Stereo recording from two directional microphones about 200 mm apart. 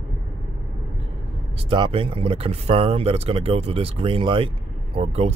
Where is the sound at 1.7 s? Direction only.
25° right (ahead or behind).